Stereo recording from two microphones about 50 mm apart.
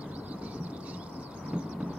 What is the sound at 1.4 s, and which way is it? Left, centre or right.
Thunder, right.